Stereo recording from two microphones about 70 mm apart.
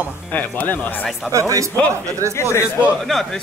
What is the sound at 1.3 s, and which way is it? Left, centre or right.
Speech, right.